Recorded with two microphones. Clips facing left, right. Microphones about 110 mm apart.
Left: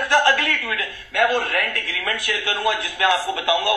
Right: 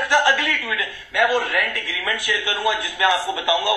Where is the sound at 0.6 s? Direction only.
40° left (ahead or behind).